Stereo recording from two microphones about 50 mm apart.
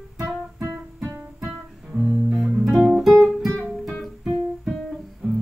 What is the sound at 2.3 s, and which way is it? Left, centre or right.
Guitar, centre.